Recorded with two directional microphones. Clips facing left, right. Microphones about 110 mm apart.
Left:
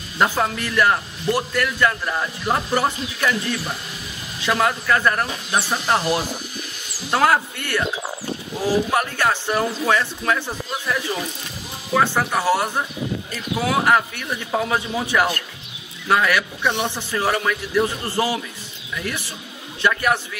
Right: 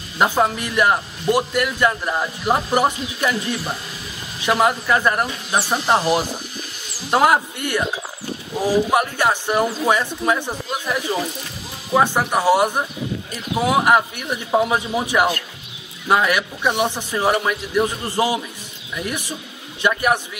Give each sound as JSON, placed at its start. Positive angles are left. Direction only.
{"t": 0.2, "sound": "a man's voice", "side_deg": -15}
{"t": 4.4, "sound": "a man's voice", "side_deg": -20}